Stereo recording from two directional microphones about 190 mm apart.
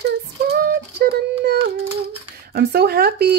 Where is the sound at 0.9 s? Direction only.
55° right (ahead or behind).